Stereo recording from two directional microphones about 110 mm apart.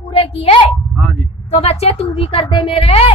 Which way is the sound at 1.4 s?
65° left (ahead or behind).